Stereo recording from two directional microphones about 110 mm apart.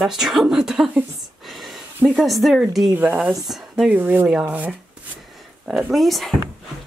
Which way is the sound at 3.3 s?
Centre (ahead or behind).